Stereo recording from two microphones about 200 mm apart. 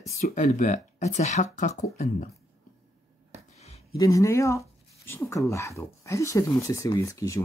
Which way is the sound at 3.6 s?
30° left (ahead or behind).